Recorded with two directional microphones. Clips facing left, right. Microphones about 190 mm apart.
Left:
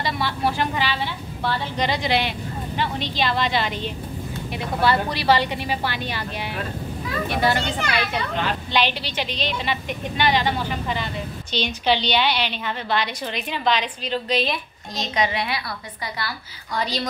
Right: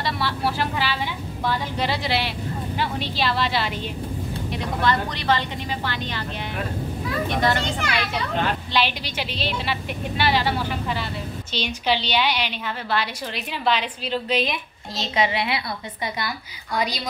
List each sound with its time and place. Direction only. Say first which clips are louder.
0.0 s a woman's voice: left 1 dB; centre (ahead or behind)
4.8 s a woman's voice: left 3 dB; 10° left (ahead or behind)
7.2 s a woman's voice: left 2 dB; 10° left (ahead or behind); by 13.8 s 5° right (ahead or behind)
15.0 s a child's voice: right 1 dB; 25° right (ahead or behind)
16.7 s a woman's voice: even; 10° right (ahead or behind)